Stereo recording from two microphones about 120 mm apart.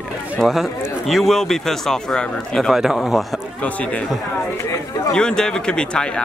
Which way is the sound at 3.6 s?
10° left (ahead or behind).